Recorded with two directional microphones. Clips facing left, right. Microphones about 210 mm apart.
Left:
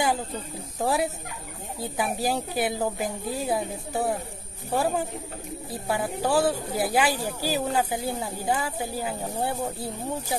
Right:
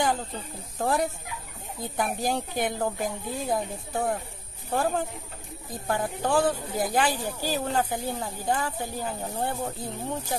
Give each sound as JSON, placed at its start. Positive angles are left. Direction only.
{"t": 0.7, "sound": "speech", "side_deg": 5}